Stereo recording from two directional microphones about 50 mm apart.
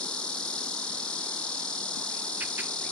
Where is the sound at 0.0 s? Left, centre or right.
Left.